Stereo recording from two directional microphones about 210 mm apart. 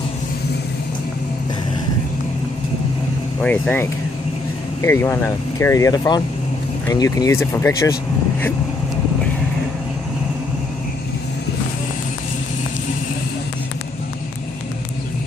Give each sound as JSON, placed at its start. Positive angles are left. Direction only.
{"t": 3.3, "sound": "speech", "side_deg": 5}